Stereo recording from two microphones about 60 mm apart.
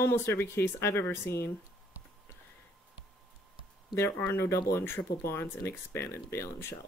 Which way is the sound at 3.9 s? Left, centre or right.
Left.